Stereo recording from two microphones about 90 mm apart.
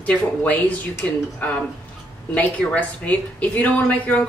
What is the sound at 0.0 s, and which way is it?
Speech, 15° left (ahead or behind).